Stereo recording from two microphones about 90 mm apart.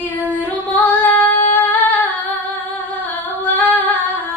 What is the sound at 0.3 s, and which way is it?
Female singing, 20° left (ahead or behind).